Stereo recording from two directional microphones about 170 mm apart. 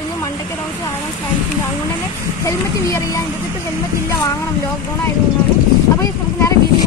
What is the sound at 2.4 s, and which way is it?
Speech, 15° left (ahead or behind).